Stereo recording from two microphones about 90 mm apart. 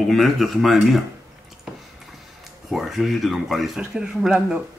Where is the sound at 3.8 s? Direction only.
5° right (ahead or behind).